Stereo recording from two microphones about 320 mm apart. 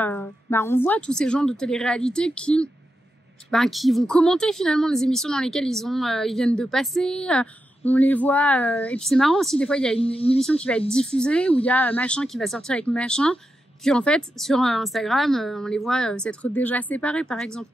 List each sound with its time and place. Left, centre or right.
0.0 s a woman's voice: centre
9.9 s speech: centre
10.4 s a woman's voice: centre